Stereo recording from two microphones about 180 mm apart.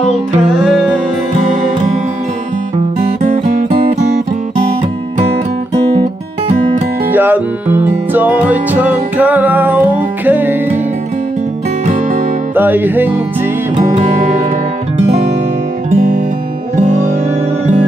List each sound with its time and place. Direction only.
7.1 s music: 10° right (ahead or behind)
12.5 s music: 10° right (ahead or behind)
13.7 s music: 35° right (ahead or behind)
15.9 s music: 50° right (ahead or behind)